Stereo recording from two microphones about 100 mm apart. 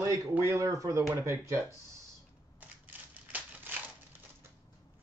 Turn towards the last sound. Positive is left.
turn(degrees=-15)  # may be behind; listen again after turning